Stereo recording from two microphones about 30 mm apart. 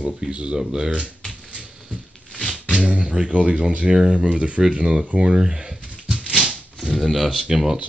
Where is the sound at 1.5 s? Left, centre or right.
Right.